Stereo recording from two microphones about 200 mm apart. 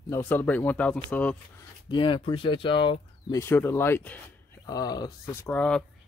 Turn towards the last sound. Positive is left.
turn(degrees=5)  # may be behind; listen again after turning